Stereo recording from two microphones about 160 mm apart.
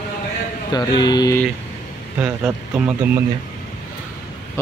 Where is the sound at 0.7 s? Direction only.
25° left (ahead or behind).